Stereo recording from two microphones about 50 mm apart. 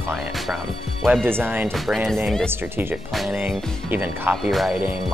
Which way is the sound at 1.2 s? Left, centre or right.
Right.